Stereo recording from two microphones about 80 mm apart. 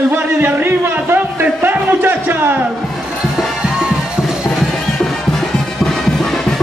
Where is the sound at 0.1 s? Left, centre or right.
Right.